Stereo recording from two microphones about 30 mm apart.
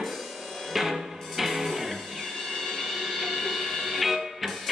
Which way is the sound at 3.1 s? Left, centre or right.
Centre.